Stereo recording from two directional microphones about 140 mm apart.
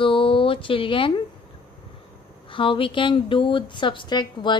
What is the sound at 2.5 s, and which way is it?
A woman's voice, 35° left (ahead or behind).